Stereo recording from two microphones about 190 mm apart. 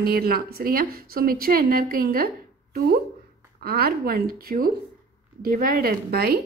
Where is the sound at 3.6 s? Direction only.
55° right (ahead or behind).